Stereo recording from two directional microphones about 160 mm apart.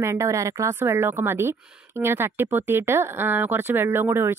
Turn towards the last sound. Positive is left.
turn(degrees=-15)  # may be behind; listen again after turning